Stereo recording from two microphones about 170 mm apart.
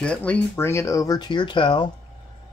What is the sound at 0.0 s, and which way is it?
Speech, 5° left (ahead or behind).